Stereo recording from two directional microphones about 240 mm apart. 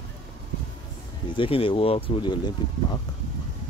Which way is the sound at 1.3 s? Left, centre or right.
Left.